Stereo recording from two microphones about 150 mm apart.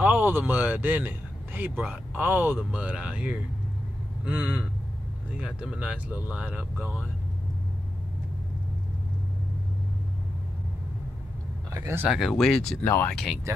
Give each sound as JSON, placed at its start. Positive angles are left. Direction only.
{"t": 0.0, "sound": "speech", "side_deg": -10}
{"t": 11.7, "sound": "speech", "side_deg": -15}
{"t": 12.1, "sound": "speech", "side_deg": 0}
{"t": 12.8, "sound": "speech", "side_deg": 15}
{"t": 13.1, "sound": "speech", "side_deg": 0}